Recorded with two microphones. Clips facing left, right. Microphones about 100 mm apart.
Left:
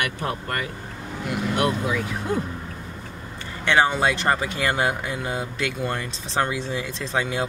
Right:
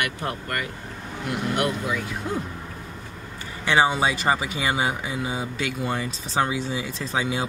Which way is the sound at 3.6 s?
5° right (ahead or behind).